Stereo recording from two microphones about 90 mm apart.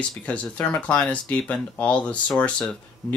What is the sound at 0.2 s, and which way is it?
Speech, 15° left (ahead or behind).